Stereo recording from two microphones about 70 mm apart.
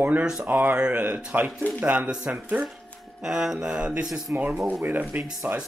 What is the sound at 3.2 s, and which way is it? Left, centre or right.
Mantra, centre.